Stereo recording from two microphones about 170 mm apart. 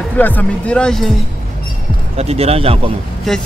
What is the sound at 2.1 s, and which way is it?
Speech, 35° right (ahead or behind).